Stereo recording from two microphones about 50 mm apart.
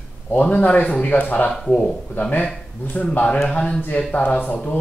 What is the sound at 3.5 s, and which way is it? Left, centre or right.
Speech, left.